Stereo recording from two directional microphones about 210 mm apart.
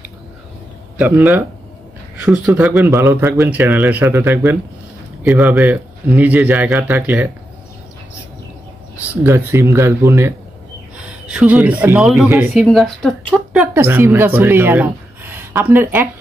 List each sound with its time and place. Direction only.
0.9 s speech: 10° right (ahead or behind)
9.2 s a man's voice: 10° right (ahead or behind)
13.5 s speech: 10° right (ahead or behind)